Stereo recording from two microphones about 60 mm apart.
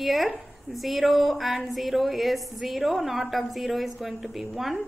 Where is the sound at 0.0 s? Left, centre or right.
Centre.